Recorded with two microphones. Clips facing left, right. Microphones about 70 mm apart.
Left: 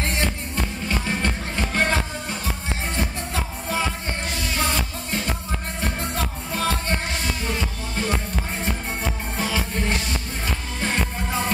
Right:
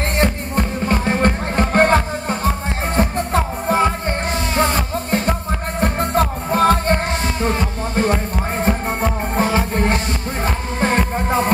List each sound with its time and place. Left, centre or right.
0.1 s music: right